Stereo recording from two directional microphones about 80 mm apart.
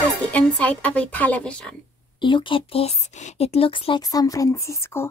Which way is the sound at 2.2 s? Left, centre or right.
Left.